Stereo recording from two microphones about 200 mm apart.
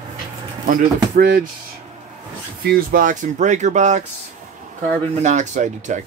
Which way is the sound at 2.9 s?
40° right (ahead or behind).